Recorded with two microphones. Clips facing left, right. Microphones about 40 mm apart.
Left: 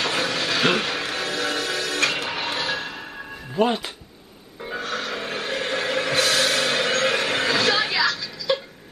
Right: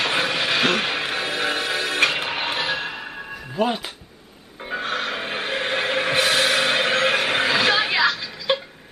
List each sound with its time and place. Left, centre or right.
0.0 s train: right
0.7 s music: right
3.5 s speech: centre
4.6 s music: right